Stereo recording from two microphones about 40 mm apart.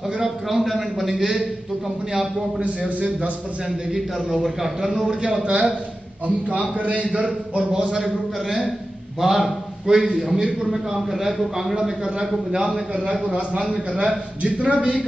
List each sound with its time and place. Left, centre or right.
0.2 s a man's voice: centre
3.9 s a man's voice: centre; by 5.7 s right
6.2 s a man's voice: right
7.2 s speech: right
7.9 s a man's voice: centre; by 14.9 s right